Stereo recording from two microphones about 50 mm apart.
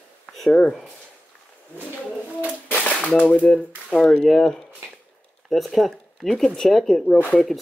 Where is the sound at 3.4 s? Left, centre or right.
Centre.